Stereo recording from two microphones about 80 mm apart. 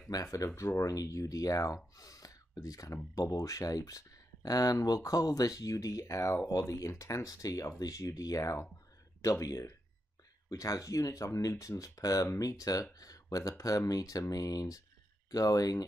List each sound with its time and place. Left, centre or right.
0.1 s speech: left